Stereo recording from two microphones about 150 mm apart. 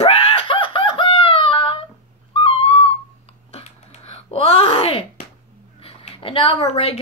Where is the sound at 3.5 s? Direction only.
45° left (ahead or behind).